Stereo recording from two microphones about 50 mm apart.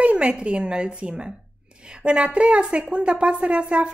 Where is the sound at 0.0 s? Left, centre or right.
Right.